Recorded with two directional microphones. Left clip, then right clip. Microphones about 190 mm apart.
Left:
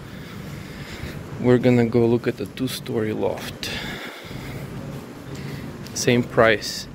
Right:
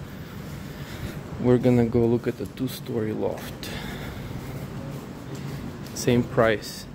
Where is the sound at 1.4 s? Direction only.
10° right (ahead or behind).